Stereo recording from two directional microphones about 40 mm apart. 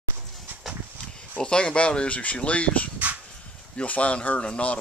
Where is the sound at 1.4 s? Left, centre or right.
Left.